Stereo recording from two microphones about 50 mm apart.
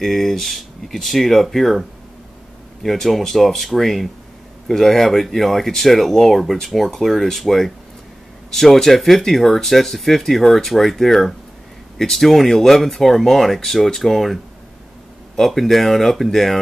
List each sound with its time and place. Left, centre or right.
0.0 s speech: centre